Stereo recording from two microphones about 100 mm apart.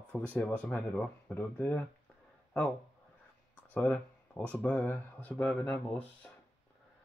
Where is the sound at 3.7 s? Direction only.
10° left (ahead or behind).